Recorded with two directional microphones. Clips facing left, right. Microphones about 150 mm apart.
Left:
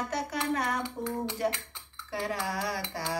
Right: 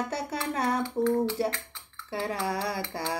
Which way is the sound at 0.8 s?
15° left (ahead or behind).